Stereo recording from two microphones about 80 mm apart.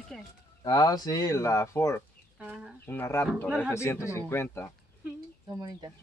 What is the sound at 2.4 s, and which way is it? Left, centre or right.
Speech, centre.